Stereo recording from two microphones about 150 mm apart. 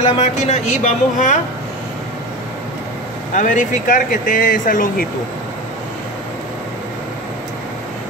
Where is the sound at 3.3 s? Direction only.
60° left (ahead or behind).